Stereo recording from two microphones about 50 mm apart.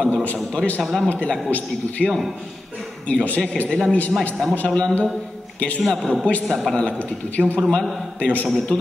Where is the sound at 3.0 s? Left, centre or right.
Left.